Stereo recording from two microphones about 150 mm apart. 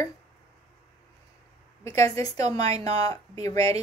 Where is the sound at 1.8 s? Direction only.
45° right (ahead or behind).